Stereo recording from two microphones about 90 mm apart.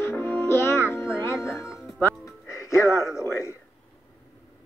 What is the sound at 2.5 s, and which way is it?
Music, 35° left (ahead or behind).